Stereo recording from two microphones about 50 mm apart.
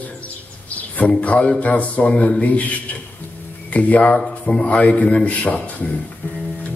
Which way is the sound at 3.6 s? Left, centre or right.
Left.